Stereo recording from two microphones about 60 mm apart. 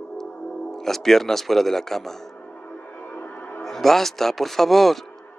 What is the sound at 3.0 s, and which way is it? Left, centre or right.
Music, left.